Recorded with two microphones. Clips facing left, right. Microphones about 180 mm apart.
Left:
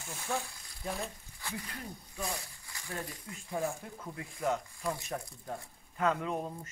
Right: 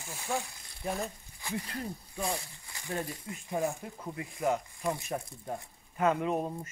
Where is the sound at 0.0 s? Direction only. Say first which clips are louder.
Right 2 dB; 10° right (ahead or behind).